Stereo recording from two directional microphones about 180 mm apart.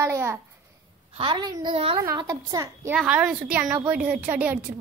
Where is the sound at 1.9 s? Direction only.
20° right (ahead or behind).